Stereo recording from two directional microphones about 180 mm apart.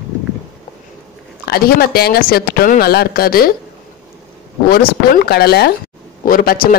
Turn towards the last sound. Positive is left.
turn(degrees=55)  # may be behind; listen again after turning